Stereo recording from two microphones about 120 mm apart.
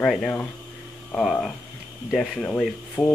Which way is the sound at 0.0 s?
5° left (ahead or behind).